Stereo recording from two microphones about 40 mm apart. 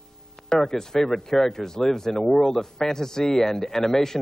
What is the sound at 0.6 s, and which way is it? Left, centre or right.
Speech, centre.